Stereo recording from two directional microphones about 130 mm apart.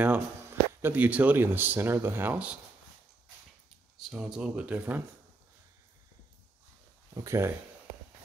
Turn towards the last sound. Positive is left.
turn(degrees=-20)  # may be behind; listen again after turning